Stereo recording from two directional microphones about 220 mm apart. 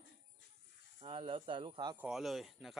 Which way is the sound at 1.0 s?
25° right (ahead or behind).